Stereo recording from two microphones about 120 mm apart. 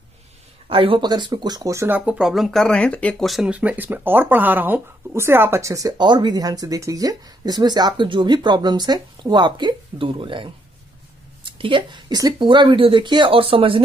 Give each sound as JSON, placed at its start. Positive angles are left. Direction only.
{"t": 0.7, "sound": "speech", "side_deg": -50}
{"t": 3.3, "sound": "speech", "side_deg": 0}
{"t": 3.5, "sound": "speech", "side_deg": -15}
{"t": 11.5, "sound": "speech", "side_deg": -45}